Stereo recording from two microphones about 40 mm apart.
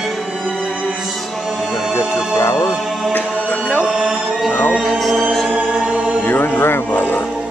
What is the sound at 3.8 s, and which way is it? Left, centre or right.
Music, right.